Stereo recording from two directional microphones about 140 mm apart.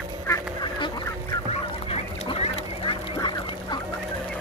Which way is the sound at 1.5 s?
45° left (ahead or behind).